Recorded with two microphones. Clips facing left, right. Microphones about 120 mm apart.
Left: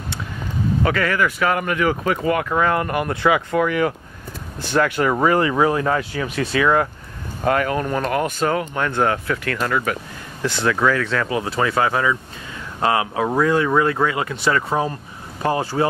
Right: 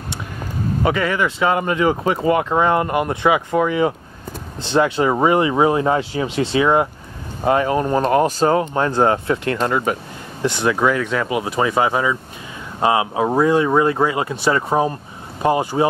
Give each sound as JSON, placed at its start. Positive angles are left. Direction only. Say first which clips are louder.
{"t": 0.8, "sound": "speech", "louder": "right 2 dB", "side_deg": -20}